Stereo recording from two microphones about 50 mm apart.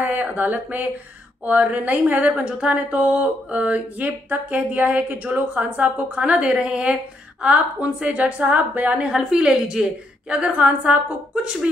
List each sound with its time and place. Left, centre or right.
0.0 s a woman's voice: right
8.4 s a woman's voice: right
8.9 s a woman's voice: centre